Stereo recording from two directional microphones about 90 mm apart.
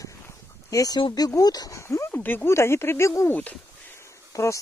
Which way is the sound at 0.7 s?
40° left (ahead or behind).